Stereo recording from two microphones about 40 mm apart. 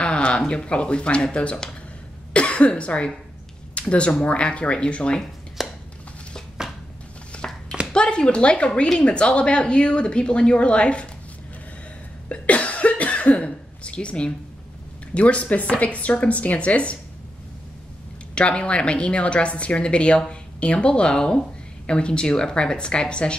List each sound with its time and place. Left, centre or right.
0.0 s a sound: left
0.5 s speech: left
5.6 s chopping: centre
7.3 s a sound: left
7.9 s speech: left
12.3 s cough: left
15.1 s speech: left
18.3 s speech: left